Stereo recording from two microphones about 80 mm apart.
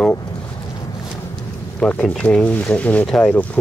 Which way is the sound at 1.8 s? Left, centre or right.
Centre.